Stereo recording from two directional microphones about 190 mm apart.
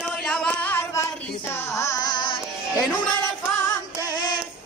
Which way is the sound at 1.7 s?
15° left (ahead or behind).